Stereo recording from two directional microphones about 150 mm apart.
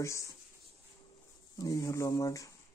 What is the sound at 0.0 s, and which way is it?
Speech, 20° left (ahead or behind).